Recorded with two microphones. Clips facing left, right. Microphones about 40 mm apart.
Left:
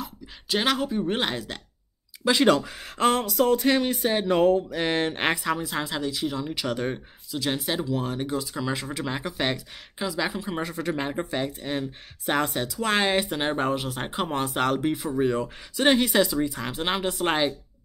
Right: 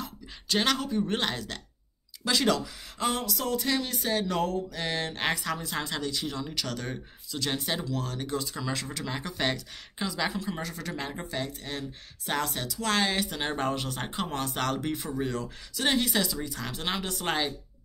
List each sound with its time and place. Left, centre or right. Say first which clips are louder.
0.0 s speech: left 2 dB; centre
2.4 s speech: left 6 dB; left
5.4 s speech: left 5 dB; centre
7.2 s speech: left 4 dB; centre
10.5 s speech: left 7 dB; left
15.7 s speech: left 6 dB; left